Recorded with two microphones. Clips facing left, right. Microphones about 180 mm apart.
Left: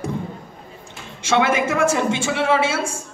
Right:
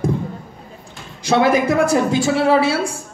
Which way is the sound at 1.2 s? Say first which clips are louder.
Right 4 dB; 35° right (ahead or behind).